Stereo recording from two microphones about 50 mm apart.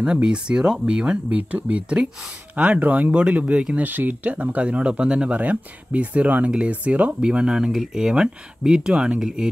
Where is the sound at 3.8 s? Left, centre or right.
Right.